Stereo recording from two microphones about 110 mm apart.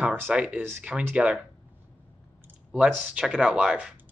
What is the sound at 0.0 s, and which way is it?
Speech, 15° right (ahead or behind).